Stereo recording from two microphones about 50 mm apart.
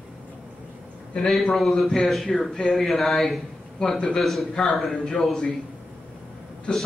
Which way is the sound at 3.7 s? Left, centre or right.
Centre.